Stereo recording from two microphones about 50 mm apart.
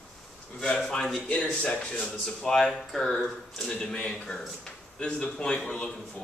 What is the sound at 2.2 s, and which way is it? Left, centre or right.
Speech, centre.